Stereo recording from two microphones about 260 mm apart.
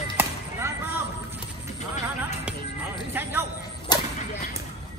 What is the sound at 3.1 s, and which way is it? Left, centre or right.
Speech, centre.